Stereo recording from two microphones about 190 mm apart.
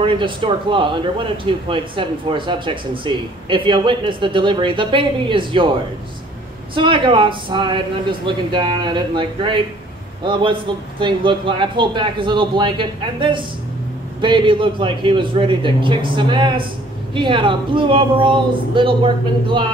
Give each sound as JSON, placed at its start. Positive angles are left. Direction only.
{"t": 0.0, "sound": "speech", "side_deg": -25}
{"t": 6.7, "sound": "speech", "side_deg": -25}